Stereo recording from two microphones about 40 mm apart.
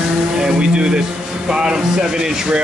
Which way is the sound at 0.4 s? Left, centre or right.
Centre.